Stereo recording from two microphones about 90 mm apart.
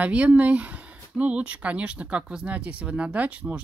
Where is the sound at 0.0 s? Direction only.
15° right (ahead or behind).